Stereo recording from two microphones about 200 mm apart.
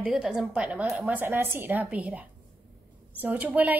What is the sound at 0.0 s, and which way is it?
A woman's voice, 5° right (ahead or behind).